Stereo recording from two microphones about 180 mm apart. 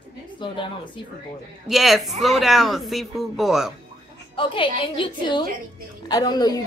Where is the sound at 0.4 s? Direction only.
25° left (ahead or behind).